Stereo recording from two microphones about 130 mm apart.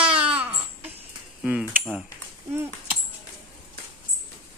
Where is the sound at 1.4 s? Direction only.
10° right (ahead or behind).